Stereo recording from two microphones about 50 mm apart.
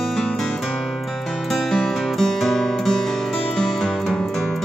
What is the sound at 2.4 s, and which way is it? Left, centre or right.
Music, centre.